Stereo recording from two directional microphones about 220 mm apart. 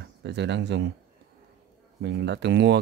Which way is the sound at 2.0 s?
50° right (ahead or behind).